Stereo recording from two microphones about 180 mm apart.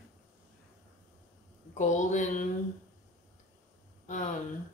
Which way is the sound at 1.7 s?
45° left (ahead or behind).